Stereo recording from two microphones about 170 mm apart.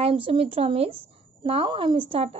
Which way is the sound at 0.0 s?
30° right (ahead or behind).